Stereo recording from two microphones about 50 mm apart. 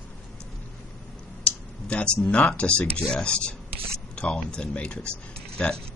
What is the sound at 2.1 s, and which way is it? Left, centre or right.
Speech, left.